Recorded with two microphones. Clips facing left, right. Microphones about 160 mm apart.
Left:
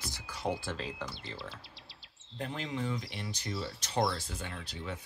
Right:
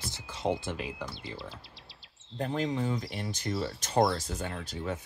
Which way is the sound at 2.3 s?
40° right (ahead or behind).